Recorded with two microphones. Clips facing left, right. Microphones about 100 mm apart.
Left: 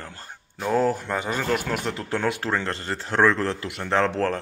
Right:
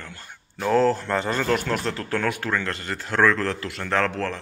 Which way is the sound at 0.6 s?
10° left (ahead or behind).